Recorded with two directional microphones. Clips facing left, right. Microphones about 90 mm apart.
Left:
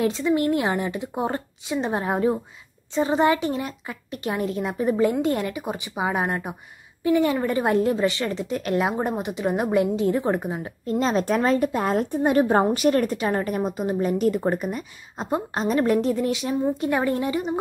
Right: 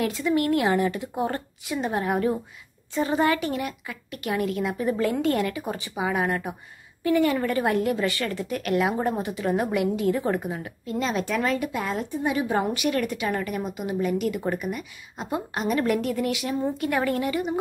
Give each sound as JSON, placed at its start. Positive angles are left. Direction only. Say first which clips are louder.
{"t": 0.0, "sound": "a woman's voice", "louder": "left 2 dB", "side_deg": 25}
{"t": 10.9, "sound": "a woman's voice", "louder": "left 5 dB", "side_deg": 35}
{"t": 12.6, "sound": "a woman's voice", "louder": "left 5 dB", "side_deg": 35}